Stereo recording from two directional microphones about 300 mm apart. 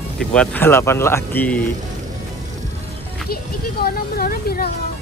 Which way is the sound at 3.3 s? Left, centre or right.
Left.